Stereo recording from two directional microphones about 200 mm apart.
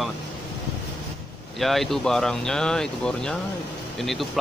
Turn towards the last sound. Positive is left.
turn(degrees=0)  # may be behind; listen again after turning